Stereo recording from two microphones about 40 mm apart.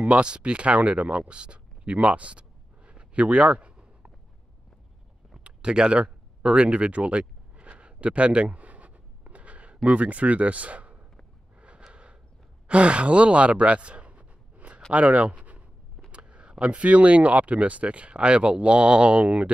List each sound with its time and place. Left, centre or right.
0.1 s speech: right
5.3 s a sound: right
9.8 s speech: right
11.9 s a sound: right
12.6 s sigh: right
14.9 s speech: right